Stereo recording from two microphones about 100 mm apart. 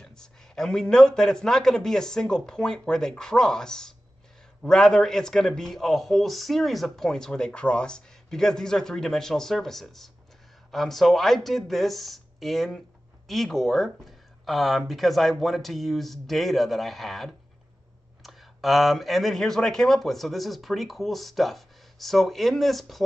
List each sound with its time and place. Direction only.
0.0 s a man's voice: 5° left (ahead or behind)